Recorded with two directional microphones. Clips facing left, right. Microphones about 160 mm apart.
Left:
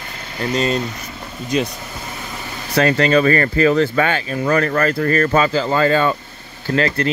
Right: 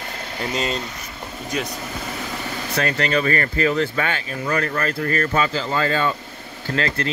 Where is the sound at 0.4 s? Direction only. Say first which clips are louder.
Left 6 dB; centre (ahead or behind).